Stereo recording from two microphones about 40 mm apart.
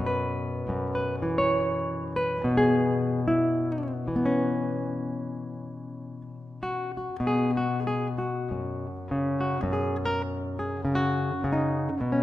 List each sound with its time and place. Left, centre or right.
0.0 s music: centre
6.6 s music: centre